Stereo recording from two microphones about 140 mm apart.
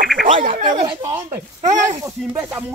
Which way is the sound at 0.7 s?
40° right (ahead or behind).